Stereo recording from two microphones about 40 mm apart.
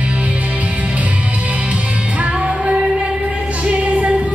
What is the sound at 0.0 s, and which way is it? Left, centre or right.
Music, right.